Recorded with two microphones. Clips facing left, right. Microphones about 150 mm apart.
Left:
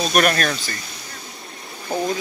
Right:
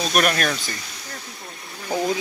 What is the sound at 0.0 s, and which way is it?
Speech, centre (ahead or behind).